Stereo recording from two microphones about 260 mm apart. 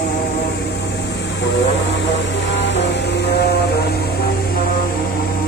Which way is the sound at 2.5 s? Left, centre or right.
Left.